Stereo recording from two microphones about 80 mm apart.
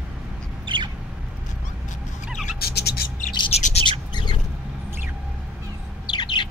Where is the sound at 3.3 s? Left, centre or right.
Left.